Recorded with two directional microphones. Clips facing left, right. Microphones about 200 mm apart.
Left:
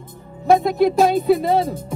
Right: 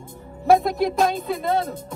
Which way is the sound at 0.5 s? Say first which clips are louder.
Left 3 dB; centre (ahead or behind).